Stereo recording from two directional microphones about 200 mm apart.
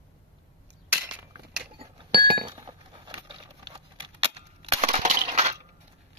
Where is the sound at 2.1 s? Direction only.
50° right (ahead or behind).